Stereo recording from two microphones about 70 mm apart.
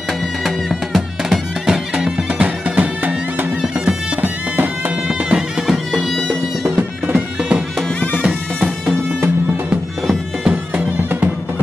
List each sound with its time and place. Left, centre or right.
0.7 s music: centre
1.7 s music: centre
5.0 s music: centre
5.9 s music: centre
7.1 s music: centre
11.1 s music: right